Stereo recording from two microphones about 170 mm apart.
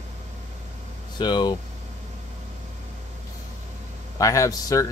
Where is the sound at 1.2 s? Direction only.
25° left (ahead or behind).